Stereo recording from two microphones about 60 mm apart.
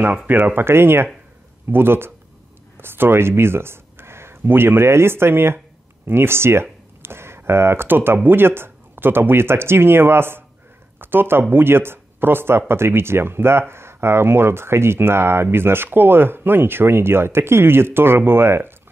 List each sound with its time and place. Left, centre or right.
0.3 s speech: right